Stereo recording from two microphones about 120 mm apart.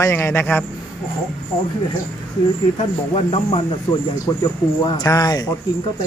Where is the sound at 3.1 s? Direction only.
55° left (ahead or behind).